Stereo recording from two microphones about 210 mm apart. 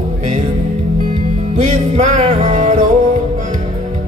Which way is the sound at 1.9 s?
35° right (ahead or behind).